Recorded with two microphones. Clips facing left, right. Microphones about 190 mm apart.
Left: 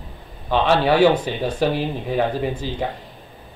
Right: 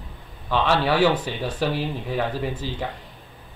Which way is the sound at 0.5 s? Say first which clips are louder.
Left 4 dB; 20° left (ahead or behind).